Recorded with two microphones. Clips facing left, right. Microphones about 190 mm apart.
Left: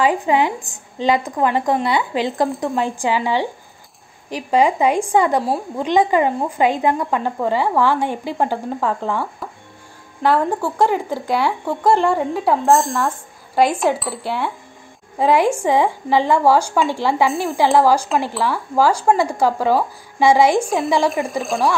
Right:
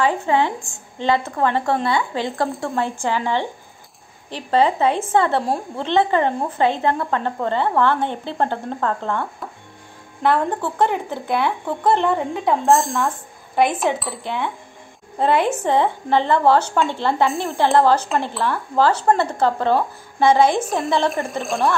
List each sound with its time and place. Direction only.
0.0 s speech: 15° left (ahead or behind); by 13.1 s centre (ahead or behind)
13.7 s cutlery: centre (ahead or behind)
15.1 s speech: 10° left (ahead or behind)
17.6 s cutlery: 5° left (ahead or behind)
18.2 s speech: 5° left (ahead or behind)
20.6 s cutlery: centre (ahead or behind)